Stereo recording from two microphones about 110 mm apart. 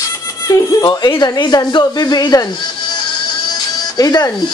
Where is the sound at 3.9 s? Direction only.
35° left (ahead or behind).